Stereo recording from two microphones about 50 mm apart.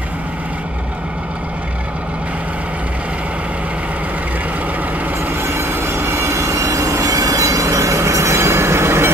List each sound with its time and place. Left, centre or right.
5.4 s train: right
6.1 s train: right